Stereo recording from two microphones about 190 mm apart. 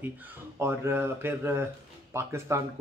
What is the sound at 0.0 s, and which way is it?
Speech, 10° right (ahead or behind).